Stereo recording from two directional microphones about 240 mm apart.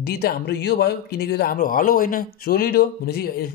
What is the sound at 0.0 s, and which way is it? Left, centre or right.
Speech, left.